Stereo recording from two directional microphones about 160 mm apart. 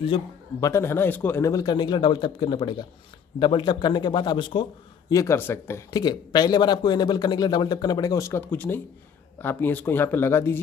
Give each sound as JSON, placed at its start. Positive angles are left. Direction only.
{"t": 0.6, "sound": "speech", "side_deg": 15}
{"t": 5.1, "sound": "speech", "side_deg": 15}